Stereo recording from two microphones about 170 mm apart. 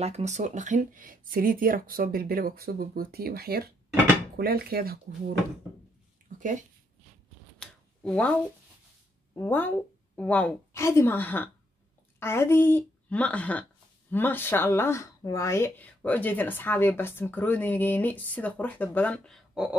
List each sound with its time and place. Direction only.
0.0 s speech: 40° right (ahead or behind); by 5.3 s 60° right (ahead or behind)
7.5 s shuffling cards: 5° left (ahead or behind)
9.3 s a woman's voice: 15° left (ahead or behind)